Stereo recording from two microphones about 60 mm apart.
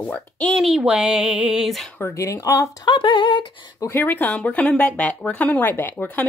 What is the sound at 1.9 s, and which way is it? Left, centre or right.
Speech, left.